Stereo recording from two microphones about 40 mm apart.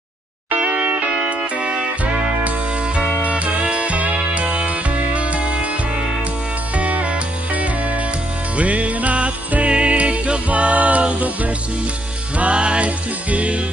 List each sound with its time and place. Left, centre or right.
0.6 s music: right
3.2 s music: right
6.8 s music: right